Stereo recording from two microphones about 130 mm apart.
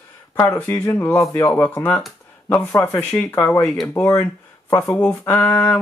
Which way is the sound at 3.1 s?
10° left (ahead or behind).